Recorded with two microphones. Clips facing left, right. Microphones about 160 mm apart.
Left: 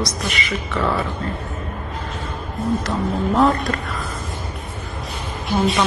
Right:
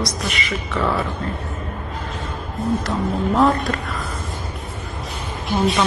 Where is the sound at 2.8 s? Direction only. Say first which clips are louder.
Even; centre (ahead or behind).